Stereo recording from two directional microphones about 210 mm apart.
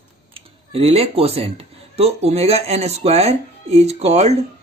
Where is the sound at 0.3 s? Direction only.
25° right (ahead or behind).